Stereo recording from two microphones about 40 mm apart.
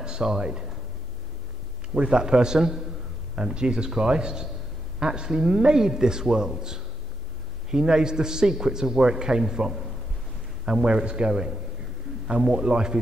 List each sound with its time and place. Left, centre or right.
0.0 s speech: right
2.0 s a man's voice: right